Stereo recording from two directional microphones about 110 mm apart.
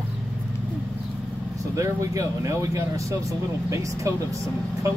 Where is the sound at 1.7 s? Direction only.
30° right (ahead or behind).